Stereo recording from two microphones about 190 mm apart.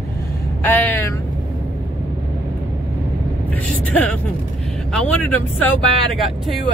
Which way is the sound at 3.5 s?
5° left (ahead or behind).